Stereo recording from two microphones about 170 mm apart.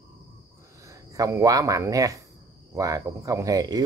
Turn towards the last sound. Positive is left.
turn(degrees=-20)  # may be behind; listen again after turning